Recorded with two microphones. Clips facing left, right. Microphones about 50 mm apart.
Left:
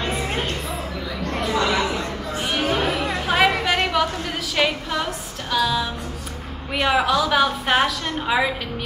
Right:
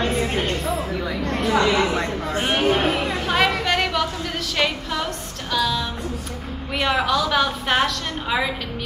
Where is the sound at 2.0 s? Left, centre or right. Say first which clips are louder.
Right 3 dB; right.